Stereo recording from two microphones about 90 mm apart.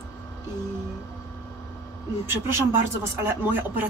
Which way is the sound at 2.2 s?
25° right (ahead or behind).